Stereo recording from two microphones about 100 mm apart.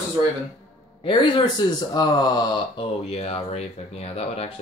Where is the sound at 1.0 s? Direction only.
50° left (ahead or behind).